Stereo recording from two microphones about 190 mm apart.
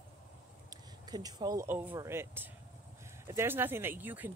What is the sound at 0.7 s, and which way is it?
Speech, 20° right (ahead or behind).